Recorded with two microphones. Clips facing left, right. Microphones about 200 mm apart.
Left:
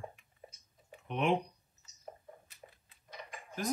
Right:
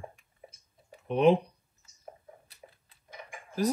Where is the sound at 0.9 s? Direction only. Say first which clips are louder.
Right 9 dB; 35° right (ahead or behind).